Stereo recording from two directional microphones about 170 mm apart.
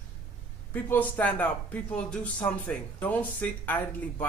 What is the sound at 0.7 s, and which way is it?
Speech, 10° left (ahead or behind).